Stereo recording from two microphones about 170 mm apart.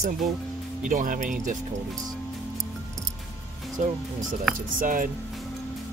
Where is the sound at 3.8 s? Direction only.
45° right (ahead or behind).